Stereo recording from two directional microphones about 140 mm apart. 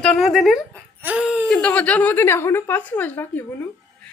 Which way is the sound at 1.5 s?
10° left (ahead or behind).